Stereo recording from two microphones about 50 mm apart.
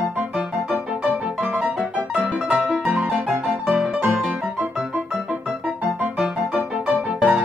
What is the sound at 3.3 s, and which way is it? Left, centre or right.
Piano, centre.